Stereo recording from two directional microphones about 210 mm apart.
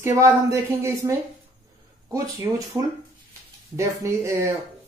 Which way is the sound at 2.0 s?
15° right (ahead or behind).